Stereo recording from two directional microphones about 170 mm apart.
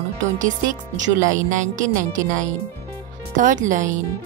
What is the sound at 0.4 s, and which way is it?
Speech, 50° right (ahead or behind).